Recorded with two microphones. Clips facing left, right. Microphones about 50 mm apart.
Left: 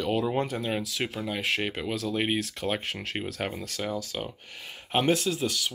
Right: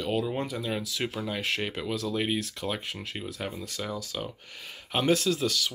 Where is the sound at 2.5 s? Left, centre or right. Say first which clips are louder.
Left 3 dB; left.